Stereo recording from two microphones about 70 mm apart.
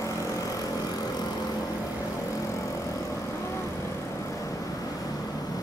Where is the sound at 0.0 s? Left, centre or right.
Left.